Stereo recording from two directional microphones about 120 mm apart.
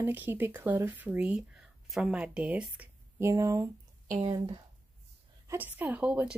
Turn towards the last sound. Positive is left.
turn(degrees=-10)  # may be behind; listen again after turning